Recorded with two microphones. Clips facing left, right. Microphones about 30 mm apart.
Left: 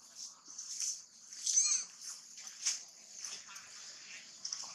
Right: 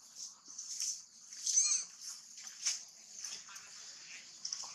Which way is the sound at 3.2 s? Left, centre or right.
Centre.